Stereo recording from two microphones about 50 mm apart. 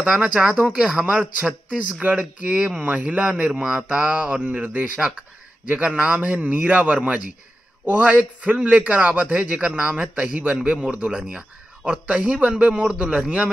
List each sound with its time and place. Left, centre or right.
0.0 s a man's voice: centre
2.0 s a man's voice: right
3.2 s a man's voice: centre
4.9 s a man's voice: right